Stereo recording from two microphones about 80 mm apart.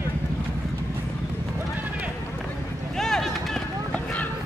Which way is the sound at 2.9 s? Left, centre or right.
Centre.